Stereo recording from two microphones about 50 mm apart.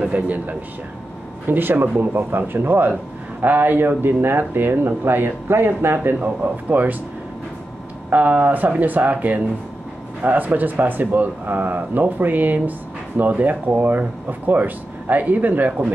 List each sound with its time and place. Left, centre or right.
0.0 s speech: right
1.5 s speech: right
6.1 s speech: right
8.1 s speech: right